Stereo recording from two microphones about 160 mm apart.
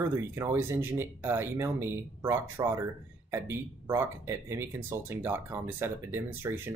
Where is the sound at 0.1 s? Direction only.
15° right (ahead or behind).